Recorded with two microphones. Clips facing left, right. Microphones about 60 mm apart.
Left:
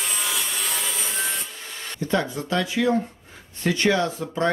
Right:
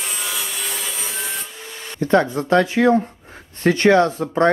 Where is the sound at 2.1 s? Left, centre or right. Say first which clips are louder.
Right 8 dB; right.